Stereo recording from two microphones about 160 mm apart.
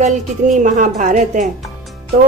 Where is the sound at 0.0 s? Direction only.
50° right (ahead or behind).